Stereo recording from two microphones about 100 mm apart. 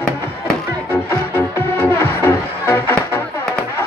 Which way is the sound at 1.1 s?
20° left (ahead or behind).